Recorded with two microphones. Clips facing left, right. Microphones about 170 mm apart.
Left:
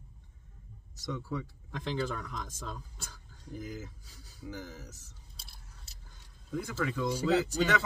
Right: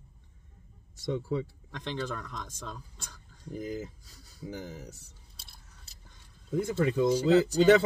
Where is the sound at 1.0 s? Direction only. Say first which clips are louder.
Right 6 dB; 25° right (ahead or behind).